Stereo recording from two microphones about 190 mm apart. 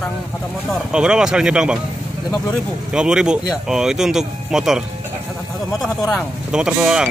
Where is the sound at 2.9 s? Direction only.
5° right (ahead or behind).